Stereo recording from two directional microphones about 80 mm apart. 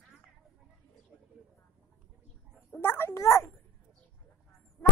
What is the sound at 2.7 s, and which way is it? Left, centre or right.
Speech, left.